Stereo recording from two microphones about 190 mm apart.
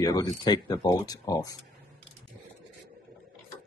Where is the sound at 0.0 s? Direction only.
20° left (ahead or behind).